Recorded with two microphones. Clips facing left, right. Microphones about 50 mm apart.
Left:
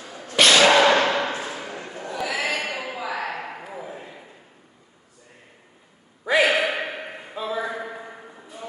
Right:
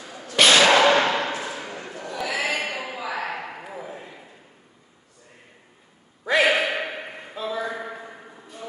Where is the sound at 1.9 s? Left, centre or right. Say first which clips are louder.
Left 1 dB; centre.